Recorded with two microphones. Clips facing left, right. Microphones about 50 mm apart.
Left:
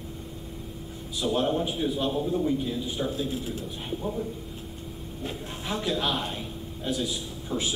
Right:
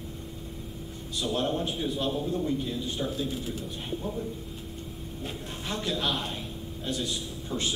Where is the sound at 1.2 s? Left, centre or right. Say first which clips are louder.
Left 3 dB; centre.